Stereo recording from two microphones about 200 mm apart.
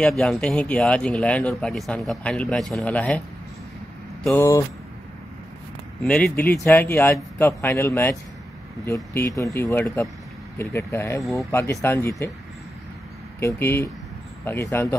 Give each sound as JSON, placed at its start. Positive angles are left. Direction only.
{"t": 0.0, "sound": "speech", "side_deg": 5}
{"t": 4.4, "sound": "speech", "side_deg": 15}
{"t": 6.0, "sound": "speech", "side_deg": 5}
{"t": 13.4, "sound": "speech", "side_deg": 10}